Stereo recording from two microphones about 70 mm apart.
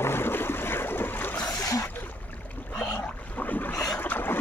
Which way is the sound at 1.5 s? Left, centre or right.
Left.